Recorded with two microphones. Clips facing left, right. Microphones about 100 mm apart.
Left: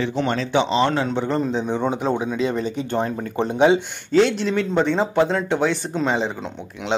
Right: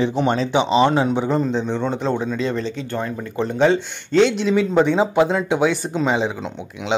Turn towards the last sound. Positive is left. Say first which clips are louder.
# right 2 dB
turn(degrees=-5)  # may be behind; listen again after turning